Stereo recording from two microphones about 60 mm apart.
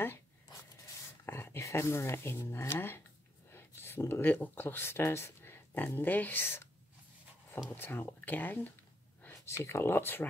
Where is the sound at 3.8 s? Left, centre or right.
Left.